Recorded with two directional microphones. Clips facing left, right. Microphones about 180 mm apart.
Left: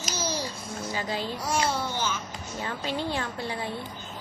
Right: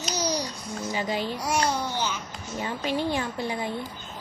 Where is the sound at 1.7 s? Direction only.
15° right (ahead or behind).